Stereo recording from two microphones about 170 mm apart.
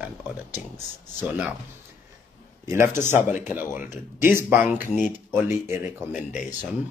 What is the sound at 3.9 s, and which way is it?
Speech, 50° left (ahead or behind).